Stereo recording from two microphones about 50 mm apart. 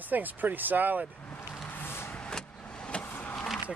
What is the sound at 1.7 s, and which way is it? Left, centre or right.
Vehicle, left.